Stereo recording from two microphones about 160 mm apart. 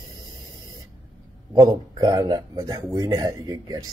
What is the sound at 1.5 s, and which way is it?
Speech, 25° right (ahead or behind).